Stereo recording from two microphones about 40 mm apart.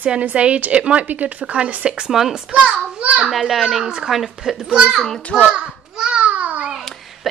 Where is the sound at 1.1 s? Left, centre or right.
Right.